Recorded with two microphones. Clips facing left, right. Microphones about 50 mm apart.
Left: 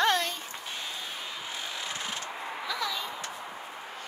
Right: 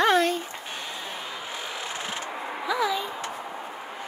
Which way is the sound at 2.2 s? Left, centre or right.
Centre.